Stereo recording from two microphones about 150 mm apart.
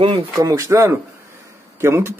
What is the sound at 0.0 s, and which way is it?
Speech, 25° right (ahead or behind).